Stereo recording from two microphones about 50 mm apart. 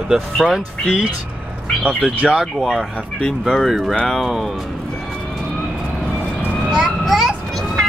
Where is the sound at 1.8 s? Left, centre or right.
Centre.